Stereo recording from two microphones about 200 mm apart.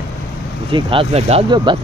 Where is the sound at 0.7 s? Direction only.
25° right (ahead or behind).